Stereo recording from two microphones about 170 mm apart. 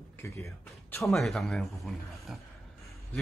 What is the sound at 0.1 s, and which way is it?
Speech, 15° left (ahead or behind).